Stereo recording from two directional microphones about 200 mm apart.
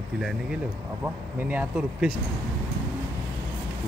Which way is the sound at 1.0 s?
10° right (ahead or behind).